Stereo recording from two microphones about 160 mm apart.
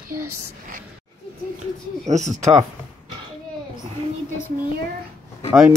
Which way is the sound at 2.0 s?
45° right (ahead or behind).